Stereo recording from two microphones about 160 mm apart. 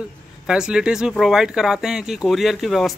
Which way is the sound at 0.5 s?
5° right (ahead or behind).